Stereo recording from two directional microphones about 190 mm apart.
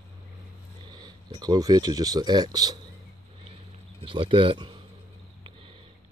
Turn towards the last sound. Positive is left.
turn(degrees=-25)  # may be behind; listen again after turning